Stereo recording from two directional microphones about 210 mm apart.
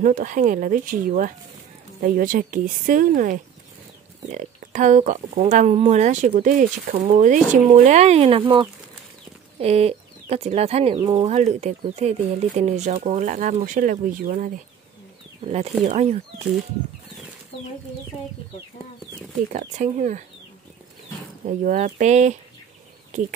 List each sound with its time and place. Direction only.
0.0 s speech: 40° right (ahead or behind)
19.5 s speech: 35° right (ahead or behind)
21.5 s speech: 35° right (ahead or behind)